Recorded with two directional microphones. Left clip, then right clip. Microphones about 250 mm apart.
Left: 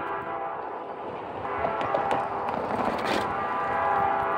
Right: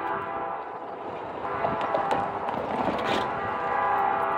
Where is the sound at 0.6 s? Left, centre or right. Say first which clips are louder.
Left 1 dB; centre.